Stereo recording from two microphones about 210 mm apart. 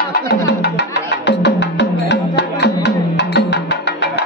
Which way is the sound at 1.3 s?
55° left (ahead or behind).